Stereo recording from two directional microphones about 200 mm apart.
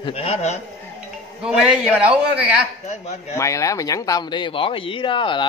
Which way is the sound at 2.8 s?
35° left (ahead or behind).